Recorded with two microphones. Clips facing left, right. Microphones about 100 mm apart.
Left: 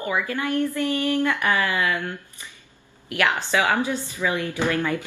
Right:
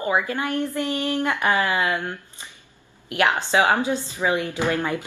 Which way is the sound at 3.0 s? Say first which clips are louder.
Right 2 dB; 20° right (ahead or behind).